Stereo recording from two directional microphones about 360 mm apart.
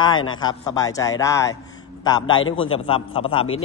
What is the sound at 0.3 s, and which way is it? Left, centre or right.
A man's voice, centre.